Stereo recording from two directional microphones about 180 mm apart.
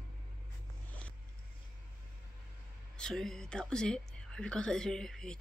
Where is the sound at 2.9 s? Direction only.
5° left (ahead or behind).